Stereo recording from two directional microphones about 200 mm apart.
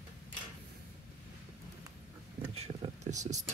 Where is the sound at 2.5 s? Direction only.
35° right (ahead or behind).